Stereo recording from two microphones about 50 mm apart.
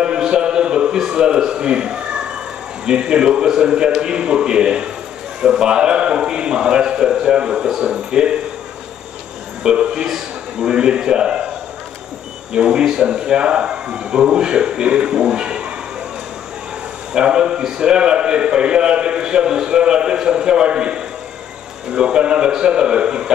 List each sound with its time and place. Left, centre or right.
0.0 s a sound: centre
2.8 s a man's voice: centre
9.6 s a man's voice: centre
12.5 s a man's voice: centre
17.1 s a man's voice: centre